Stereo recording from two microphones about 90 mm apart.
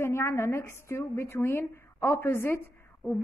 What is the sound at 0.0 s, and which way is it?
A woman's voice, 30° left (ahead or behind).